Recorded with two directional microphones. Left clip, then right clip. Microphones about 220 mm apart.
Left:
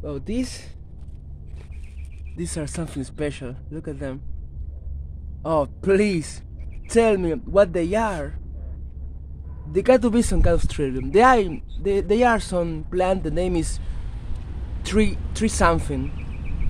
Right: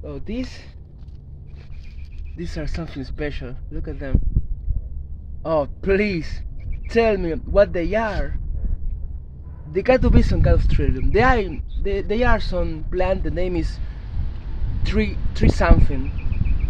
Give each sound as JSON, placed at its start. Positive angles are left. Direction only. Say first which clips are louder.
{"t": 0.3, "sound": "speech", "louder": "left 1 dB", "side_deg": 25}
{"t": 2.3, "sound": "speech", "louder": "left 1 dB", "side_deg": 20}
{"t": 5.4, "sound": "speech", "louder": "right 1 dB", "side_deg": 10}
{"t": 9.8, "sound": "speech", "louder": "even", "side_deg": 15}
{"t": 15.3, "sound": "speech", "louder": "even", "side_deg": 20}